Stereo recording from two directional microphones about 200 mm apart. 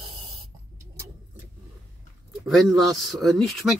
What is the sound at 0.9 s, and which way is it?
Vehicle, 15° right (ahead or behind).